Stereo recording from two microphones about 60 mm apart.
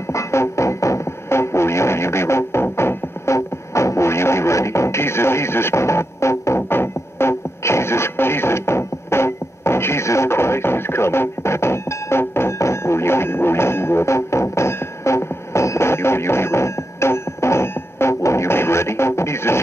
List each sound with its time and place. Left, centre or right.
0.0 s music: left